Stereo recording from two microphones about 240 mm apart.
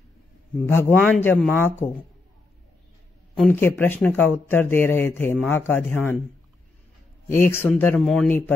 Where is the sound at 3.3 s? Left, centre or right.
Centre.